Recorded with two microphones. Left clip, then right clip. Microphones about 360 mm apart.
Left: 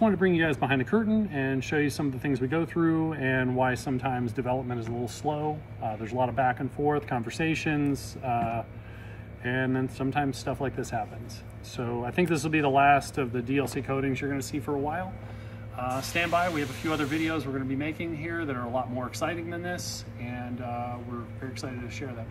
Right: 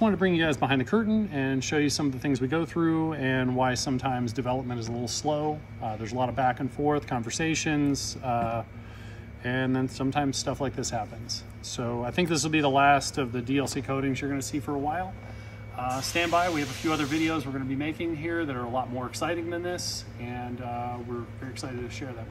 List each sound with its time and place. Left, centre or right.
0.0 s speech: centre
4.8 s speech: centre
5.2 s speech: centre